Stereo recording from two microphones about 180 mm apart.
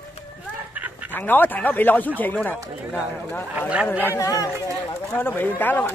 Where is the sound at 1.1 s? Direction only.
10° left (ahead or behind).